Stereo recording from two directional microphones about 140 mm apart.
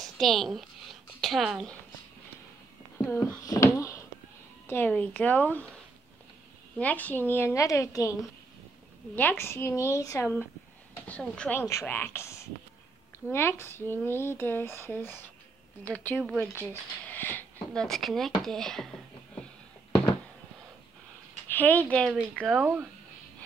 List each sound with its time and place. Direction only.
0.0 s a woman's voice: centre (ahead or behind)
3.0 s speech: 15° left (ahead or behind)
3.4 s a sound: 20° left (ahead or behind)
4.6 s speech: 15° left (ahead or behind)
6.8 s a woman's voice: 10° left (ahead or behind)
17.8 s a woman's voice: 5° left (ahead or behind)
21.5 s speech: 10° left (ahead or behind)
22.3 s speech: 5° right (ahead or behind)